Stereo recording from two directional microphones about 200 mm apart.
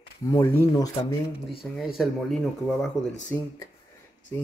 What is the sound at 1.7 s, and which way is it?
Speech, centre (ahead or behind).